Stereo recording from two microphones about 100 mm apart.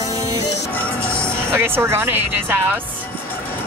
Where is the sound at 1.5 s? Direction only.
25° right (ahead or behind).